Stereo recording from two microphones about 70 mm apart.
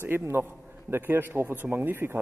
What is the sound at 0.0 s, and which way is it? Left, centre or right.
Speech, right.